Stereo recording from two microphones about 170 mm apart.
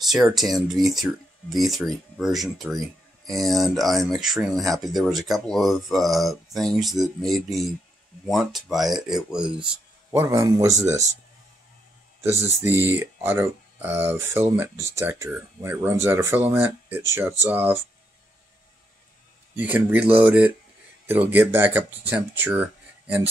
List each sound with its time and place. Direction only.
0.0 s speech: centre (ahead or behind)
10.1 s speech: 15° right (ahead or behind)
12.2 s speech: 15° right (ahead or behind)
19.5 s speech: 10° right (ahead or behind)